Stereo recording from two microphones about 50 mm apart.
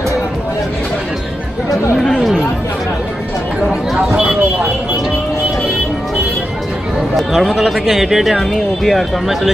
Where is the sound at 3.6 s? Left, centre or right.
Centre.